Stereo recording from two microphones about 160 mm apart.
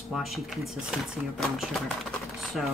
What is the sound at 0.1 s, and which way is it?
Speech, centre (ahead or behind).